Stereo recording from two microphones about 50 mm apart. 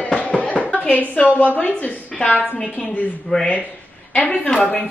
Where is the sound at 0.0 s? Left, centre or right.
Left.